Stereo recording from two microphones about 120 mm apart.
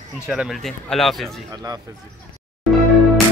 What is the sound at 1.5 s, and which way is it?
Speech, 30° right (ahead or behind).